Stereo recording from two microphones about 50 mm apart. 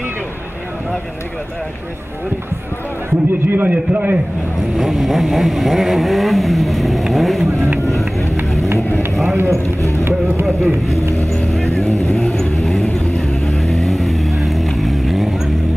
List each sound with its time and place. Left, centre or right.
3.4 s a man's voice: right
3.7 s a man's voice: right
4.7 s vehicle: centre
9.1 s speech: centre
9.4 s speech: right
10.4 s vehicle: centre
11.0 s speech: right
11.3 s vehicle: centre